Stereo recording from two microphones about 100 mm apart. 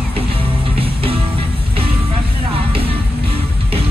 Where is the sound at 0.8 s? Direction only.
70° right (ahead or behind).